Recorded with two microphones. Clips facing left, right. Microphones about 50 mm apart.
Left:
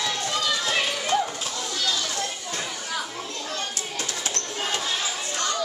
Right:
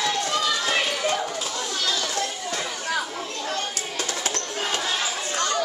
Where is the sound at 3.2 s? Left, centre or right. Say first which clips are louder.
Right 3 dB; right.